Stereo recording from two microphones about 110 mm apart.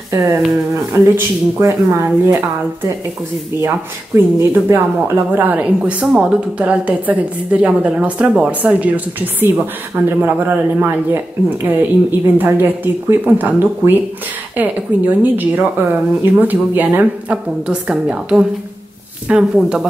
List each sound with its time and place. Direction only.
0.1 s speech: 25° right (ahead or behind)
4.4 s speech: 25° right (ahead or behind); by 19.9 s 10° right (ahead or behind)